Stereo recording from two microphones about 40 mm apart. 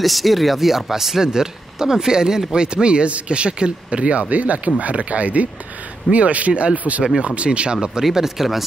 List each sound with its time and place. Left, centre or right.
0.0 s a man's voice: centre; by 8.0 s right
8.0 s speech: centre